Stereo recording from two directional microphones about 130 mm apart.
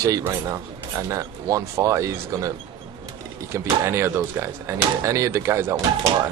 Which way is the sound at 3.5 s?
20° right (ahead or behind).